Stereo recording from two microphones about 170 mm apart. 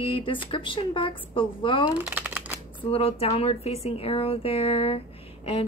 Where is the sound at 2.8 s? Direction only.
35° left (ahead or behind).